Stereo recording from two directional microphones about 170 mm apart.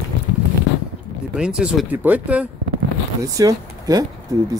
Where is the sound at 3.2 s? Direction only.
20° right (ahead or behind).